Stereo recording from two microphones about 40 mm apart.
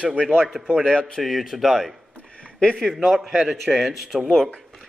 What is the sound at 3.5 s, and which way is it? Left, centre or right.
Speech, centre.